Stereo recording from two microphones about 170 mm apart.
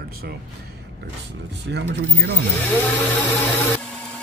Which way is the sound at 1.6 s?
90° right.